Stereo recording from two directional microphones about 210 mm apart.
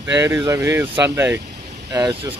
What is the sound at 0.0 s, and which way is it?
Speech, 15° right (ahead or behind).